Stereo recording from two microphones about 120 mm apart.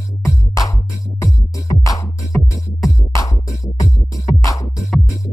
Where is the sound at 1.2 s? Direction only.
25° left (ahead or behind).